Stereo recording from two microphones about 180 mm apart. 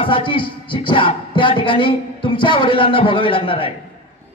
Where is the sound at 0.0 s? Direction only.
30° left (ahead or behind).